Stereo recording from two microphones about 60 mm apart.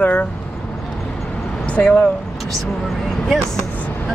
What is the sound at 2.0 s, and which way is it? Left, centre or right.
Speech, centre.